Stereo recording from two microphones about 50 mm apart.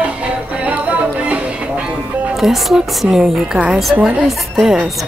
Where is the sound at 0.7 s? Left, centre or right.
Right.